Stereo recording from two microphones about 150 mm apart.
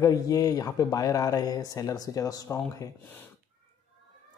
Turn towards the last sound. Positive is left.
turn(degrees=20)  # may be behind; listen again after turning